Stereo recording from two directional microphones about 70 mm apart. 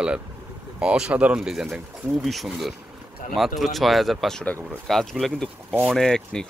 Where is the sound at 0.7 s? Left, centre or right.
Centre.